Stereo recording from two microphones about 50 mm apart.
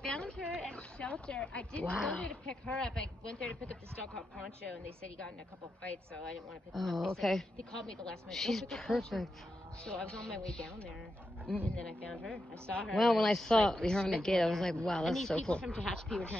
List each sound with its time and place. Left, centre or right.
0.0 s speech: centre
6.7 s speech: centre
8.3 s speech: centre
9.8 s speech: centre
13.3 s speech: centre
14.8 s speech: centre
15.0 s speech: centre
15.3 s speech: centre